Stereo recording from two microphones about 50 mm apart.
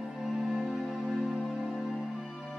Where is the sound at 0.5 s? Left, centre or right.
Centre.